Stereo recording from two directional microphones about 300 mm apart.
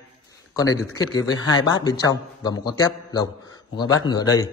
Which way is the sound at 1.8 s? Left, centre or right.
Centre.